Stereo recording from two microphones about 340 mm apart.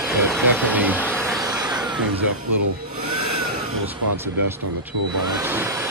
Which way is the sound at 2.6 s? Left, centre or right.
Right.